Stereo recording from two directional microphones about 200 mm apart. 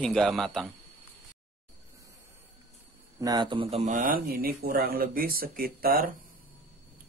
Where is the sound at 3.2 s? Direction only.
20° right (ahead or behind); by 6.1 s 45° right (ahead or behind).